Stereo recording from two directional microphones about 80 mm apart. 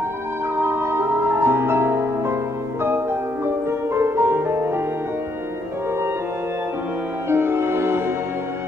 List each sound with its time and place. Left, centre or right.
0.6 s music: right
7.2 s music: right